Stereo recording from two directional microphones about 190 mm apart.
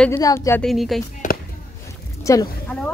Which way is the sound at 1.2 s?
45° left (ahead or behind).